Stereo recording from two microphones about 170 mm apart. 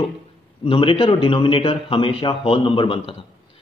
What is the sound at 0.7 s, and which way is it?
A man's voice, 30° left (ahead or behind).